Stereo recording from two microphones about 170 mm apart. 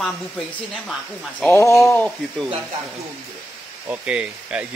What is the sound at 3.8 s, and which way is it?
Speech, 10° right (ahead or behind).